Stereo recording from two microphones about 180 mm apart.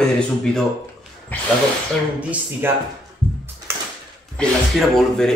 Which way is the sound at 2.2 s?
10° right (ahead or behind).